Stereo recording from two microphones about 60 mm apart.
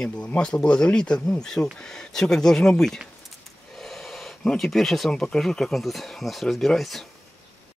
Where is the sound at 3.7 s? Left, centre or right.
Centre.